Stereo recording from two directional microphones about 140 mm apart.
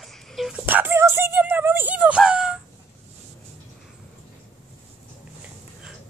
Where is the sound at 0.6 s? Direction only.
15° right (ahead or behind).